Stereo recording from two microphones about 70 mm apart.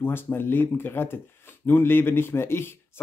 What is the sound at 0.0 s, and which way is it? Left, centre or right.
Speech, left.